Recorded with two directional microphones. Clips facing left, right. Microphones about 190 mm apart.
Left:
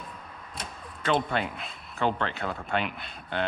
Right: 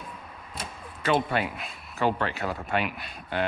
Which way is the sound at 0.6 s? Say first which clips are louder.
Right 2 dB; 5° right (ahead or behind).